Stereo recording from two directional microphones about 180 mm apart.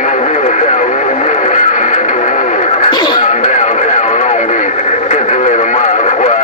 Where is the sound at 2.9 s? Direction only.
25° left (ahead or behind).